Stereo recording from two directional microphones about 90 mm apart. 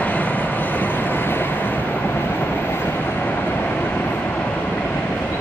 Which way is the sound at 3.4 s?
20° left (ahead or behind).